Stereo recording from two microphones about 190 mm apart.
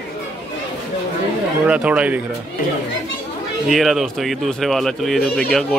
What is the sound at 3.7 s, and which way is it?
Speech, centre (ahead or behind).